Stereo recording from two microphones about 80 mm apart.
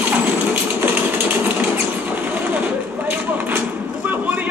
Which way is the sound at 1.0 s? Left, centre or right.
Right.